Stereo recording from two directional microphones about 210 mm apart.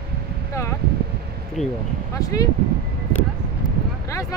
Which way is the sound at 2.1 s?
15° left (ahead or behind).